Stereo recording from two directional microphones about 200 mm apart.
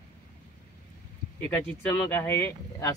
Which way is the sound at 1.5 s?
10° left (ahead or behind).